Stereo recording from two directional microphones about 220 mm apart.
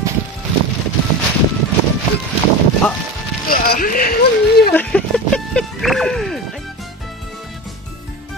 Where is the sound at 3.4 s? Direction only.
40° left (ahead or behind).